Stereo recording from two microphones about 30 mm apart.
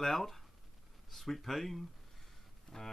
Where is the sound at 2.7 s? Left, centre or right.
Centre.